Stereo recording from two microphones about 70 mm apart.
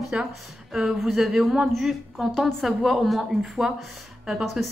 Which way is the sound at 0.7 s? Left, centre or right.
Centre.